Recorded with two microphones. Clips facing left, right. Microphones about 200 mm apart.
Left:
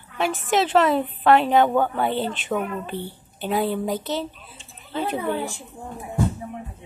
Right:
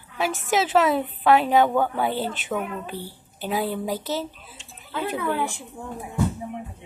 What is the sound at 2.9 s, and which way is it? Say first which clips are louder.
Speech: left 3 dB; 20° left (ahead or behind).